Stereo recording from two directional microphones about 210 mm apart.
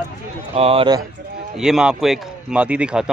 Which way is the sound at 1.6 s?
5° right (ahead or behind).